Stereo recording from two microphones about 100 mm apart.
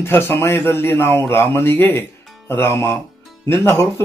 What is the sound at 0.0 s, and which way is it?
A man's voice, 25° left (ahead or behind).